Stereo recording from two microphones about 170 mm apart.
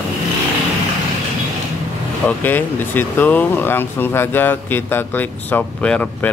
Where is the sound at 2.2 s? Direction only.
10° left (ahead or behind).